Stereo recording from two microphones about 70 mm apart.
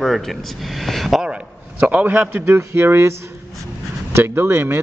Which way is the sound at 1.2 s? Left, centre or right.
Centre.